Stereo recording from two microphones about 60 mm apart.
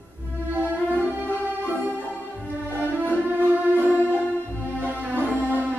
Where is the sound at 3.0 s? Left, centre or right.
Right.